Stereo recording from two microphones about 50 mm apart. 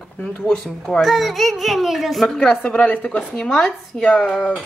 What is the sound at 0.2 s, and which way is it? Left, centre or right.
Speech, centre.